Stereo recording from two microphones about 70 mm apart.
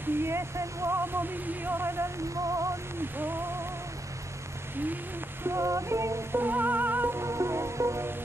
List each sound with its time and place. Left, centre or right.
0.0 s speech: right
3.0 s speech: right
5.4 s music: right
6.4 s music: right